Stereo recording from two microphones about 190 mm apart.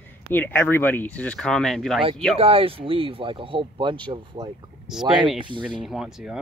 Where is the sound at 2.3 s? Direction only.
30° right (ahead or behind).